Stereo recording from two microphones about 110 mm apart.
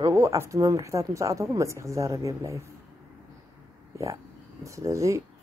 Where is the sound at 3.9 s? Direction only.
30° right (ahead or behind).